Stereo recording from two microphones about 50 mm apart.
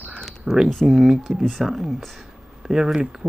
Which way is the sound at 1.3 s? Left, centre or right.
Right.